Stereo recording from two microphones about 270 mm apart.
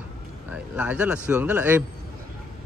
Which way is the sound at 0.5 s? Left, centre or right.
Centre.